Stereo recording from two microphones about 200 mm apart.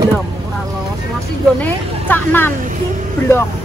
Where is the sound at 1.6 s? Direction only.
10° left (ahead or behind).